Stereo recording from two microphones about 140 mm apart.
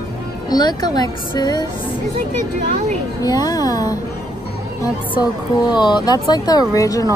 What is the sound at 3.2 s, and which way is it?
Speech, 25° left (ahead or behind).